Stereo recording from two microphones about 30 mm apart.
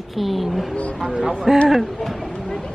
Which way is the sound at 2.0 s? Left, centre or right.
Centre.